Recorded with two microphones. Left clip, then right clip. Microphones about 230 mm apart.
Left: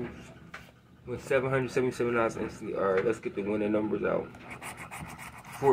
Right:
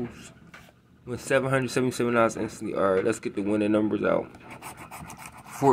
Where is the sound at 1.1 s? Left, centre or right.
Right.